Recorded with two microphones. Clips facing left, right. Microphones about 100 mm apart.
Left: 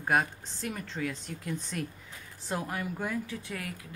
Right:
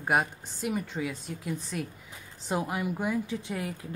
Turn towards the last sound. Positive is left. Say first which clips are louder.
# right 4 dB
turn(degrees=-25)  # may be behind; listen again after turning